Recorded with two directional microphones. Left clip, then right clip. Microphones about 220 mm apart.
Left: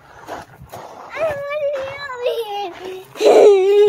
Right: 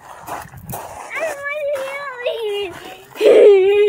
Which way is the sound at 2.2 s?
20° left (ahead or behind).